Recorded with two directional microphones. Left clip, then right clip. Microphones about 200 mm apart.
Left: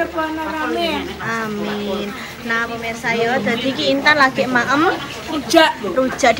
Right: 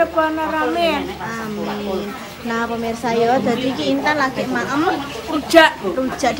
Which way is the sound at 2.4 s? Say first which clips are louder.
Left 1 dB; 20° right (ahead or behind).